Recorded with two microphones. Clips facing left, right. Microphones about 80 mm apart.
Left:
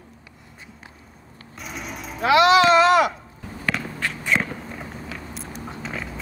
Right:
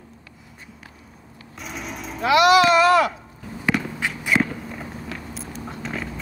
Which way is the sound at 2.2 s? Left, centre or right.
Left.